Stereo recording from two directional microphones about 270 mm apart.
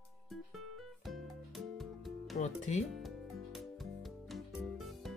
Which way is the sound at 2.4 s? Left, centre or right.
Left.